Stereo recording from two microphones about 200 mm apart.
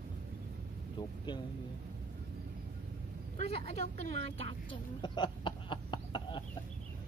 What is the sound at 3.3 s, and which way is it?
Speech, 30° left (ahead or behind).